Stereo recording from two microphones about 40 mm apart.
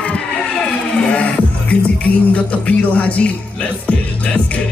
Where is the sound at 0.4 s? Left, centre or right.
Left.